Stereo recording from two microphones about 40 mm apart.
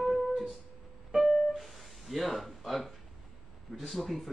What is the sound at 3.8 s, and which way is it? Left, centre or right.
Speech, centre.